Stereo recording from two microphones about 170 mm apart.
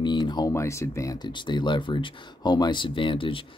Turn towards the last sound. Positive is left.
turn(degrees=30)  # may be behind; listen again after turning